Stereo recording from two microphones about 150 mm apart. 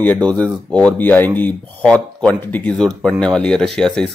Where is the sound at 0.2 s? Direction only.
5° left (ahead or behind).